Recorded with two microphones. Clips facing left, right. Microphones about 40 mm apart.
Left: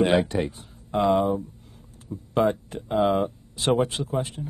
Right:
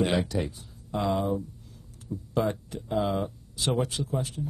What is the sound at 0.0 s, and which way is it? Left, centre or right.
A man's voice, left.